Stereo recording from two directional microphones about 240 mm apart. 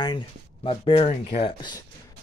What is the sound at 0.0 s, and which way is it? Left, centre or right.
Speech, centre.